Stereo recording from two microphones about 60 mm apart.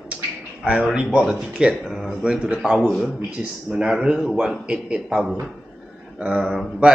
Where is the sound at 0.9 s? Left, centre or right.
Centre.